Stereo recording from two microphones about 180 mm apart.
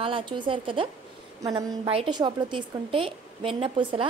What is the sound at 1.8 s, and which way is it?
A woman's voice, 30° right (ahead or behind).